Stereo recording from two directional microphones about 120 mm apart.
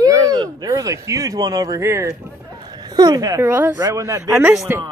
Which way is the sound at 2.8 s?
35° right (ahead or behind).